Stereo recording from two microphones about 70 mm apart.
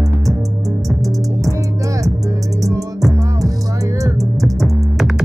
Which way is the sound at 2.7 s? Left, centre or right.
Right.